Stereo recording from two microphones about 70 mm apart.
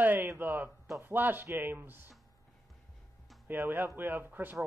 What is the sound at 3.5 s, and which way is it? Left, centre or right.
Speech, right.